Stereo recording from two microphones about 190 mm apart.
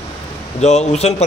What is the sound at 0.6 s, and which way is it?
Speech, 35° left (ahead or behind).